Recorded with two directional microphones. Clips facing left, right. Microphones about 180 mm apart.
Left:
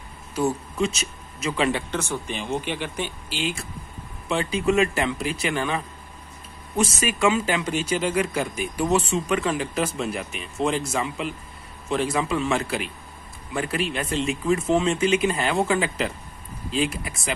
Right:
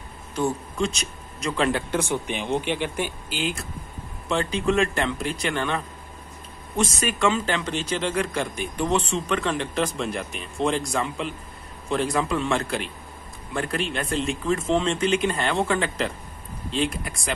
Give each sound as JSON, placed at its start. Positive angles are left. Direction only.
{"t": 0.4, "sound": "speech", "side_deg": 5}
{"t": 1.9, "sound": "speech", "side_deg": -15}
{"t": 3.3, "sound": "a man's voice", "side_deg": 0}